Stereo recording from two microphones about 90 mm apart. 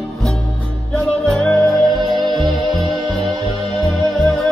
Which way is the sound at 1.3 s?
Centre (ahead or behind).